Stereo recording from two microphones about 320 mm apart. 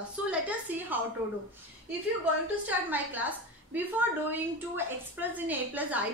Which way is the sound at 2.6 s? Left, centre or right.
Centre.